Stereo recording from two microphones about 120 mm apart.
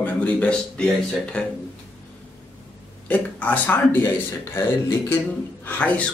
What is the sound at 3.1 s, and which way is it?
Speech, 15° left (ahead or behind).